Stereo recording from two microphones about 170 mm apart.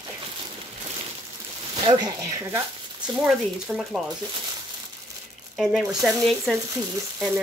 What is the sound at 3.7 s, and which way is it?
Speech, 5° right (ahead or behind).